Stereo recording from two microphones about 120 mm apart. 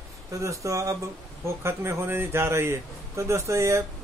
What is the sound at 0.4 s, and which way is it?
A man's voice, 25° right (ahead or behind).